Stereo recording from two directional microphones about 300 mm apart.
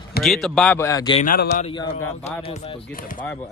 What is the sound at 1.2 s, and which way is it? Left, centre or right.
Speech, left.